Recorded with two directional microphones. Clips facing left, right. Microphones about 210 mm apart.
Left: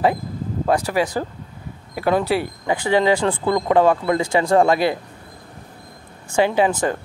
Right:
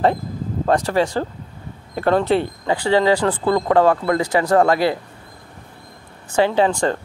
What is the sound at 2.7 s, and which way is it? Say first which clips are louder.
Speech: right 1 dB; 20° left (ahead or behind).